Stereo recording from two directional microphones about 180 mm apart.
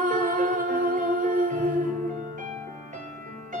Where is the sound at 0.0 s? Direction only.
45° right (ahead or behind).